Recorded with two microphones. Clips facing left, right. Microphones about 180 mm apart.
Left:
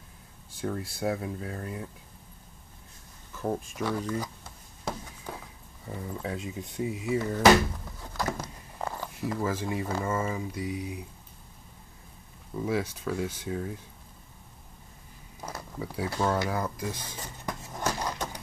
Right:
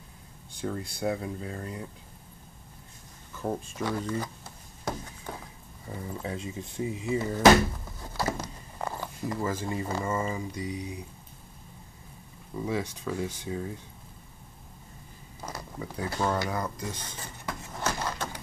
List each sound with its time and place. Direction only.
0.6 s speech: 5° left (ahead or behind)
3.3 s speech: centre (ahead or behind)
5.9 s speech: 5° right (ahead or behind)
7.2 s speech: 5° right (ahead or behind)
8.0 s biting: 5° right (ahead or behind)
9.2 s speech: 5° left (ahead or behind)
12.6 s speech: 10° left (ahead or behind)
15.4 s speech: 5° left (ahead or behind)
17.5 s a sound: 15° left (ahead or behind)